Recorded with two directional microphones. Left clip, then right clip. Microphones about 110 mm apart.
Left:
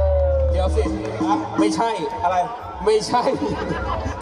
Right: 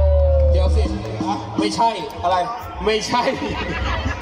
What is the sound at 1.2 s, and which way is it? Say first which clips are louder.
Music: left 3 dB; 15° right (ahead or behind).